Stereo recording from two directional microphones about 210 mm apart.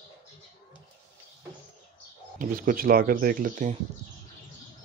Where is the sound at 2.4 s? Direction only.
40° right (ahead or behind).